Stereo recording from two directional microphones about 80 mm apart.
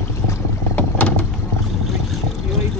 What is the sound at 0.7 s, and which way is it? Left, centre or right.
Vehicle, centre.